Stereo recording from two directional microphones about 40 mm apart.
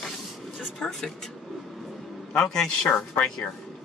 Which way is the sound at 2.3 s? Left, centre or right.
Centre.